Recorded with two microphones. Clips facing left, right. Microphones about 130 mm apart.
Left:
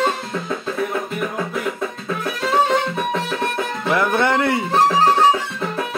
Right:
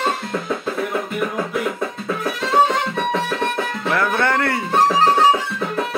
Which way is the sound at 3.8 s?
15° left (ahead or behind).